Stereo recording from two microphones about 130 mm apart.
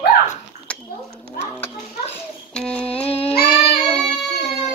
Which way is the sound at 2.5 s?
10° left (ahead or behind).